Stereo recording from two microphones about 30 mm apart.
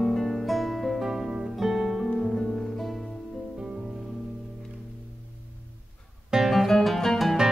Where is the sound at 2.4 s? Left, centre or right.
Centre.